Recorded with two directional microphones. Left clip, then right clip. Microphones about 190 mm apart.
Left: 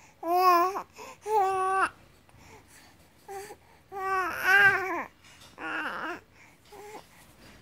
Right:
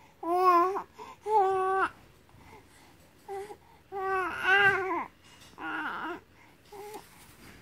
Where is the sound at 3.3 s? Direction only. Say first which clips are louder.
Right 2 dB; 20° left (ahead or behind).